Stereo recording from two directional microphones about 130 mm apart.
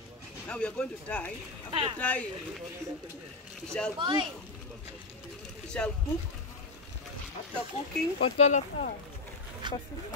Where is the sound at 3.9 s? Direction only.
35° right (ahead or behind).